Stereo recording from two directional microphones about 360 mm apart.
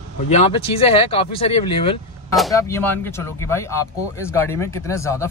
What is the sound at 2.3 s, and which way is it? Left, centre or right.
Speech, centre.